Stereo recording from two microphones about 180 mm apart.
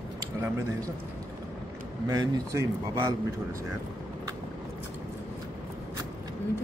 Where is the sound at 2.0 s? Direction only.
20° right (ahead or behind).